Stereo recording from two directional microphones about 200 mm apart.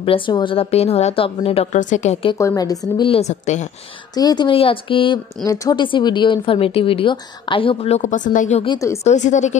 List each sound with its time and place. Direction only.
0.0 s speech: 25° left (ahead or behind)
2.3 s speech: 15° left (ahead or behind); by 3.6 s 35° left (ahead or behind)
4.1 s speech: 20° left (ahead or behind); by 8.6 s 35° left (ahead or behind)
8.6 s a woman's voice: 15° left (ahead or behind)
9.0 s a woman's voice: 35° left (ahead or behind)